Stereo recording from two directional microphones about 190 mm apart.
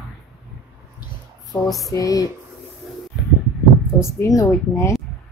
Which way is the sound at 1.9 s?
20° left (ahead or behind).